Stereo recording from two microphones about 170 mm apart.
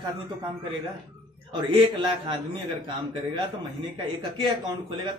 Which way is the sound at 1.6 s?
30° right (ahead or behind).